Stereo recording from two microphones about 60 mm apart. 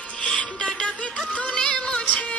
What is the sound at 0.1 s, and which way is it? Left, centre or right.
Music, left.